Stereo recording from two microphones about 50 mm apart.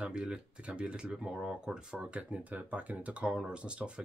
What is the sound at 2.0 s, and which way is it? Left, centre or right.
Speech, right.